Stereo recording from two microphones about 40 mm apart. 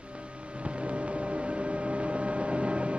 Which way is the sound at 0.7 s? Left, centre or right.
Right.